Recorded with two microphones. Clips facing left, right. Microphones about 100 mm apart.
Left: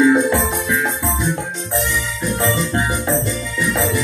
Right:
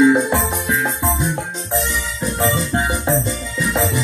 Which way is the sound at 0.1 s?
20° right (ahead or behind).